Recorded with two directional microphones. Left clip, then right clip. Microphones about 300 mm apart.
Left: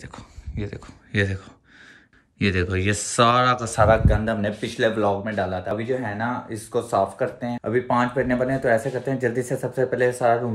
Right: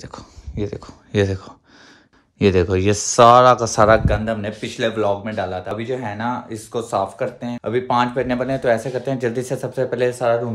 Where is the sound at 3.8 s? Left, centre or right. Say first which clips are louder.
Right 4 dB; right.